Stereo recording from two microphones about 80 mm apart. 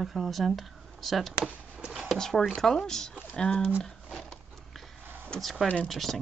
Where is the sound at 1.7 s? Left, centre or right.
Centre.